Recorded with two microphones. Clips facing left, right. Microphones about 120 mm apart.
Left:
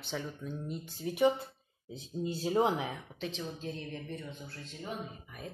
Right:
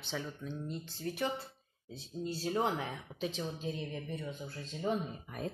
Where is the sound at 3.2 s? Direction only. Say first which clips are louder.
Right 2 dB; 10° right (ahead or behind).